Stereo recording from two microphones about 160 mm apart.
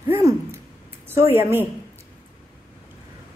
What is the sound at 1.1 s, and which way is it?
Speech, 15° right (ahead or behind).